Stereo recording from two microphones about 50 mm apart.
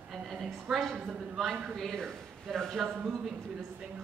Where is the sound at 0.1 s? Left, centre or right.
Centre.